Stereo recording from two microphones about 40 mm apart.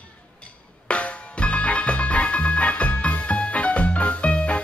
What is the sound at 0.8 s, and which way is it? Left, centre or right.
Music, left.